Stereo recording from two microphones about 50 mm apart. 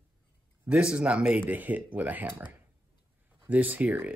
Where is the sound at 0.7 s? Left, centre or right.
Centre.